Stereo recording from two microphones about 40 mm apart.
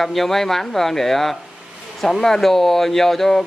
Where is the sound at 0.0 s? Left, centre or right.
Centre.